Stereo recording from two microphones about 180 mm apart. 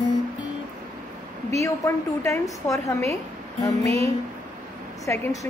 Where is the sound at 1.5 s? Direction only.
15° left (ahead or behind).